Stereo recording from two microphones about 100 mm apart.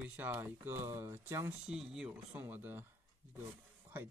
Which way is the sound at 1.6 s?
5° right (ahead or behind).